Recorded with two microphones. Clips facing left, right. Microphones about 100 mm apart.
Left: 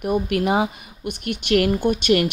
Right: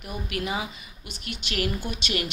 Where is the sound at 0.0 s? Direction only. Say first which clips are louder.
Left 11 dB; 55° left (ahead or behind).